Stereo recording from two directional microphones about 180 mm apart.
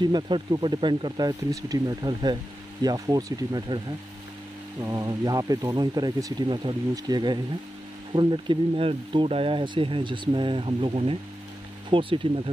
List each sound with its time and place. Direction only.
0.0 s speech: 25° right (ahead or behind)
4.8 s speech: 20° right (ahead or behind)